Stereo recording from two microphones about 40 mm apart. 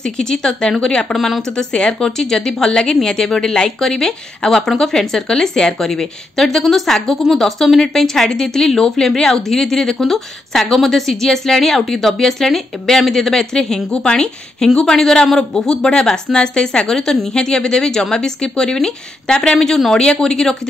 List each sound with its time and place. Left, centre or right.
0.0 s a woman's voice: centre
1.1 s speech: centre
1.6 s a woman's voice: centre